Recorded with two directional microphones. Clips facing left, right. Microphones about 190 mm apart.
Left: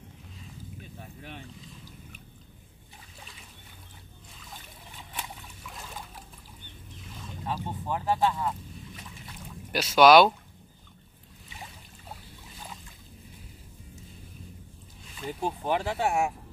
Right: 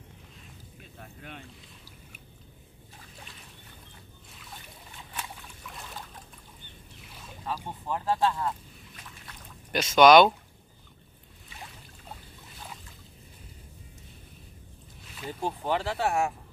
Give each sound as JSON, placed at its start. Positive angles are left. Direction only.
{"t": 0.9, "sound": "speech", "side_deg": 5}
{"t": 5.7, "sound": "boat", "side_deg": 5}
{"t": 7.1, "sound": "boat", "side_deg": -5}
{"t": 7.4, "sound": "speech", "side_deg": 15}
{"t": 9.3, "sound": "boat", "side_deg": 5}
{"t": 15.1, "sound": "speech", "side_deg": 0}
{"t": 15.6, "sound": "speech", "side_deg": 10}